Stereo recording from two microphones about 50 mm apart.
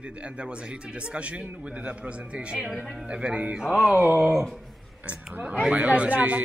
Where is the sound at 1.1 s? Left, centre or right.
Right.